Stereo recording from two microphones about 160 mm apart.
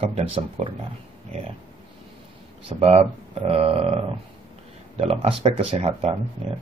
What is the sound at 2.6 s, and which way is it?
Speech, 35° right (ahead or behind).